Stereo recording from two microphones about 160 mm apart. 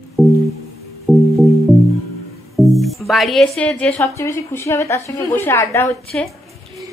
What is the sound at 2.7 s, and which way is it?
Speech, centre (ahead or behind).